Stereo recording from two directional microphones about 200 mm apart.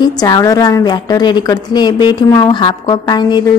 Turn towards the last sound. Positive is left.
turn(degrees=20)  # may be behind; listen again after turning